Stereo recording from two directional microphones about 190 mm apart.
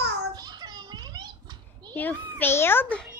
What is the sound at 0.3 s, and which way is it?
Children playing, 20° right (ahead or behind).